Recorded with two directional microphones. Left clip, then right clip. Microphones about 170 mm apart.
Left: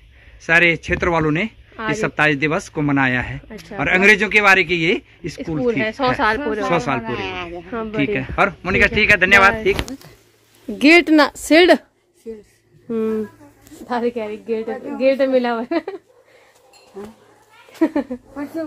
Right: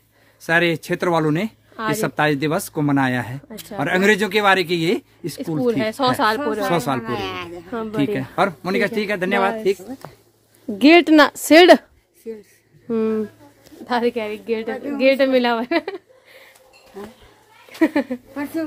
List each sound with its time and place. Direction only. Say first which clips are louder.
0.4 s speech: left 4 dB; 40° right (ahead or behind)
3.4 s a woman's voice: left 1 dB; 5° right (ahead or behind)
3.7 s speech: left 4 dB; 40° right (ahead or behind)
5.7 s speech: left 1 dB; 10° right (ahead or behind)
6.7 s speech: left 4 dB; 40° right (ahead or behind)
7.0 s speech: left 1 dB; 20° left (ahead or behind)
7.7 s a woman's voice: left 1 dB; 5° right (ahead or behind)
8.1 s speech: left 3 dB; 35° right (ahead or behind)
10.7 s speech: even; 20° right (ahead or behind)
13.8 s a woman's voice: right 1 dB; centre (ahead or behind)
17.0 s speech: left 1 dB; 25° right (ahead or behind)
17.7 s speech: right 1 dB; 10° right (ahead or behind)
18.3 s speech: right 1 dB; 35° right (ahead or behind)